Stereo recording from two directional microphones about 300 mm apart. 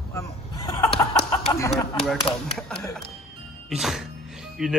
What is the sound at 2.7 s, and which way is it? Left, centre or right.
A man's voice, centre.